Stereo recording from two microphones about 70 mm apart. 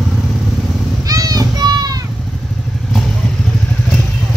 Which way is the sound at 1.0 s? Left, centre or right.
Right.